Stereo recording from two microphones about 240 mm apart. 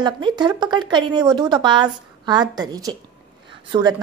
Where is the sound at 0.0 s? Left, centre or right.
Centre.